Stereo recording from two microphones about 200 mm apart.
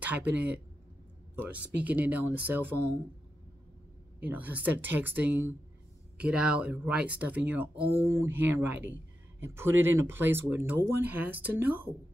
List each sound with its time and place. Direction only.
0.0 s speech: 10° right (ahead or behind)
4.2 s speech: 10° right (ahead or behind)